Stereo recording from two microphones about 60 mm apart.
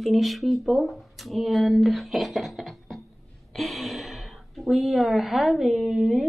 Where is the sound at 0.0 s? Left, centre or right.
Centre.